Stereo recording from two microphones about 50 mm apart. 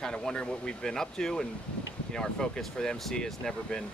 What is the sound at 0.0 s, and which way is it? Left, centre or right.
Speech, centre.